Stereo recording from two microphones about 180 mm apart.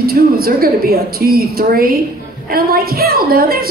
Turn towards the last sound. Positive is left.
turn(degrees=-55)  # may be behind; listen again after turning